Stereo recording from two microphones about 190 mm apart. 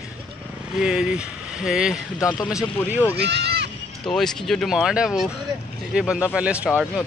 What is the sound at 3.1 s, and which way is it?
Speech, 60° right (ahead or behind).